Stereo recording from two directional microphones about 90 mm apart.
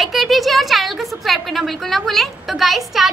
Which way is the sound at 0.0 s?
Centre (ahead or behind).